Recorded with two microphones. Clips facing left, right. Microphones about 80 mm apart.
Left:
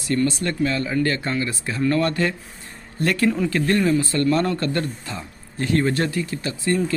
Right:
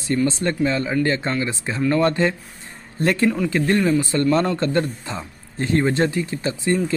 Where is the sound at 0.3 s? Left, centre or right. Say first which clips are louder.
Right 2 dB; right.